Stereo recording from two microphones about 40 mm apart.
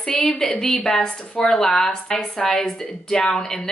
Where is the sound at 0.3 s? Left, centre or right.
Centre.